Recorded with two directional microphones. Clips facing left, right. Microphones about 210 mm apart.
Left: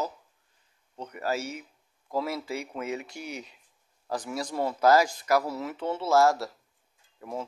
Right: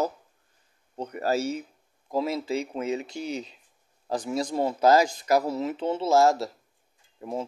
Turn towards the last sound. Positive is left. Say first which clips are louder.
# right 4 dB
turn(degrees=-25)  # may be behind; listen again after turning